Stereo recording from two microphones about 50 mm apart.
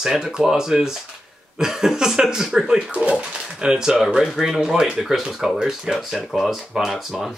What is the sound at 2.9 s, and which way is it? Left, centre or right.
Speech, right.